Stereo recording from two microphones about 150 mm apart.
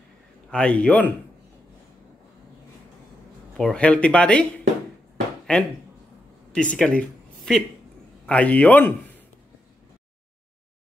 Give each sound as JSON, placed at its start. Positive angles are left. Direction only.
{"t": 0.5, "sound": "speech", "side_deg": 5}
{"t": 3.5, "sound": "speech", "side_deg": 5}
{"t": 5.5, "sound": "a man's voice", "side_deg": 5}